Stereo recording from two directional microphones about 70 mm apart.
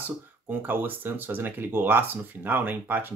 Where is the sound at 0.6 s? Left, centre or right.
Right.